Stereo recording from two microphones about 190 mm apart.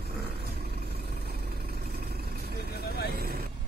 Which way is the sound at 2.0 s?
55° right (ahead or behind).